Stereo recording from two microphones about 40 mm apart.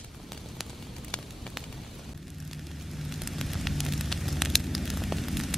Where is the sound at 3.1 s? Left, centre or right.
Centre.